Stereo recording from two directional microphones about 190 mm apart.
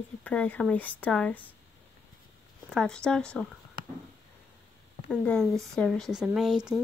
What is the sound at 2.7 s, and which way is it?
Speech, 5° left (ahead or behind).